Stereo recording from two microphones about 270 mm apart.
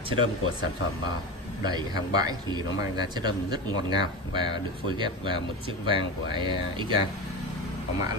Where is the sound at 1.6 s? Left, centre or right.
Centre.